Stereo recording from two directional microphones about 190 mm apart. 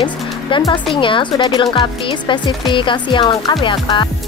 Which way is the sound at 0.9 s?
25° left (ahead or behind).